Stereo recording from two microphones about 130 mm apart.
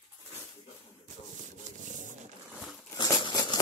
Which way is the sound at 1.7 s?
75° right (ahead or behind).